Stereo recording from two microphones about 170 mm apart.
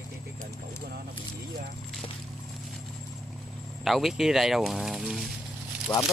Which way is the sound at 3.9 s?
Centre (ahead or behind).